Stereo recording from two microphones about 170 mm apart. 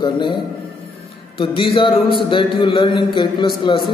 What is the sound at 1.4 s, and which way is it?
A man's voice, 30° left (ahead or behind).